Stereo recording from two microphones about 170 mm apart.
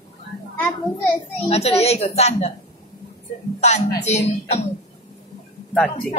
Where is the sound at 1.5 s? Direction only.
35° left (ahead or behind).